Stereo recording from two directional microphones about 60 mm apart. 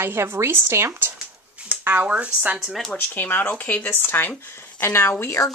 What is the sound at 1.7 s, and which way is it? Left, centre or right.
Speech, right.